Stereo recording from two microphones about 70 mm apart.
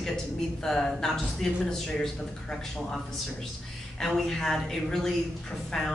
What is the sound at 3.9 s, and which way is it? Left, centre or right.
A woman's voice, centre.